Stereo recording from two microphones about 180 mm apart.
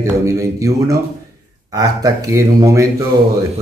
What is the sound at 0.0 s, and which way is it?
Speech, 15° right (ahead or behind).